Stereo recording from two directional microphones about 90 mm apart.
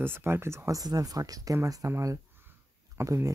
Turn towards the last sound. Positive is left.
turn(degrees=-35)  # may be behind; listen again after turning